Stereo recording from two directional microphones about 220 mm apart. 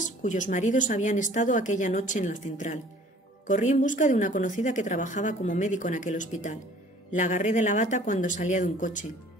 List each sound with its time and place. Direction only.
0.0 s a woman's voice: 35° left (ahead or behind)